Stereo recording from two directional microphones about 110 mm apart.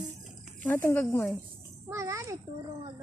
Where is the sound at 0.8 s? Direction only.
25° left (ahead or behind).